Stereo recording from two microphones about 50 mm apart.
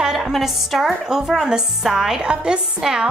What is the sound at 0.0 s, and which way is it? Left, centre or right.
A woman's voice, centre.